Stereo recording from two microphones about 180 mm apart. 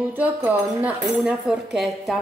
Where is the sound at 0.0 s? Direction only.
10° right (ahead or behind).